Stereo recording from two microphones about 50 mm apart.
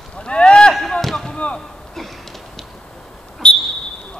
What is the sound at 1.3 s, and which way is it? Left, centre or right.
Speech, left.